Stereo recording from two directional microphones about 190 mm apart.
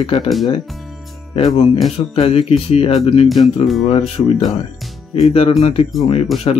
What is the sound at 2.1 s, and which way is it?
Speech, 30° left (ahead or behind).